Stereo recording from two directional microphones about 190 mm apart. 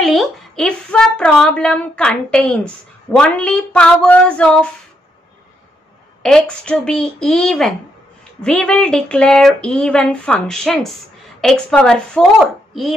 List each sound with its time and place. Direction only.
0.0 s a woman's voice: centre (ahead or behind)
6.2 s a woman's voice: 5° left (ahead or behind)